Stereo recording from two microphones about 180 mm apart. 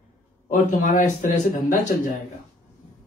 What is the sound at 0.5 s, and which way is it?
Speech, 45° left (ahead or behind).